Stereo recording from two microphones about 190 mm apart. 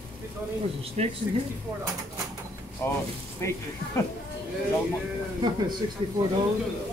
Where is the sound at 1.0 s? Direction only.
35° right (ahead or behind).